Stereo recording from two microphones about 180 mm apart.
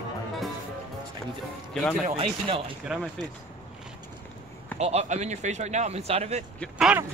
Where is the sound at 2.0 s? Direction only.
35° right (ahead or behind).